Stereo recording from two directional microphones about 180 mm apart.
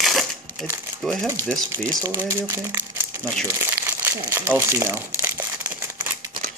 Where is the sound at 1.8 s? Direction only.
15° right (ahead or behind).